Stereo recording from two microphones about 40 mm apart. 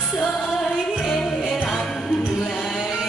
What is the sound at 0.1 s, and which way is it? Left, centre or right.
Music, centre.